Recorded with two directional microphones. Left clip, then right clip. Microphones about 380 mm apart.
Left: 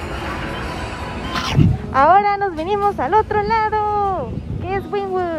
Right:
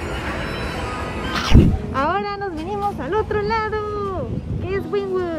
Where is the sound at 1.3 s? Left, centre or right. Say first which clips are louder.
Right 2 dB; centre.